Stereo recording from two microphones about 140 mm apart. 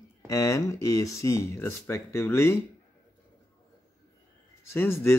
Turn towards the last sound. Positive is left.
turn(degrees=20)  # may be behind; listen again after turning